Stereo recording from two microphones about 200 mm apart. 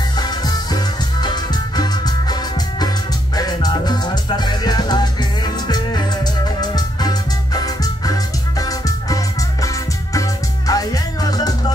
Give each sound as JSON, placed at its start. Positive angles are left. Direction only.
{"t": 0.2, "sound": "music", "side_deg": 20}
{"t": 3.3, "sound": "music", "side_deg": 20}
{"t": 10.7, "sound": "music", "side_deg": 20}